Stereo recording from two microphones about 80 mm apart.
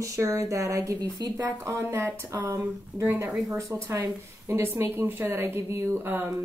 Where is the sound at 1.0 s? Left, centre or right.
Right.